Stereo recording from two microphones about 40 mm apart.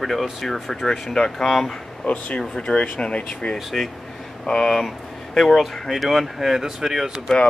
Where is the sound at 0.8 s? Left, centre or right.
Centre.